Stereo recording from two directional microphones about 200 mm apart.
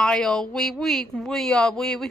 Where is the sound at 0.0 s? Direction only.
5° left (ahead or behind).